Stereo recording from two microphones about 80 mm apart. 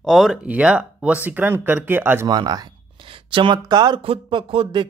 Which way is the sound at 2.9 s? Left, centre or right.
Right.